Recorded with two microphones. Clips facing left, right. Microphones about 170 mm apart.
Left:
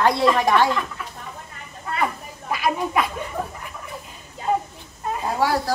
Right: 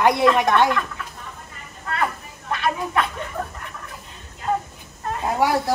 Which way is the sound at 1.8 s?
5° left (ahead or behind).